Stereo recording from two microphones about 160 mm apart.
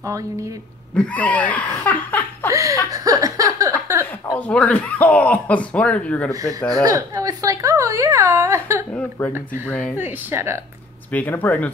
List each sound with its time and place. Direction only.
0.0 s speech: 20° right (ahead or behind)
0.9 s speech: 10° left (ahead or behind)
2.5 s chuckle: 20° right (ahead or behind)
4.4 s speech: 10° left (ahead or behind)
6.7 s a woman's voice: 20° right (ahead or behind)
9.2 s speech: 10° left (ahead or behind)
9.9 s speech: 15° right (ahead or behind)
11.1 s speech: 10° left (ahead or behind)